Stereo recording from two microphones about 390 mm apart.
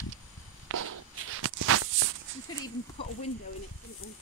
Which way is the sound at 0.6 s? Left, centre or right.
Right.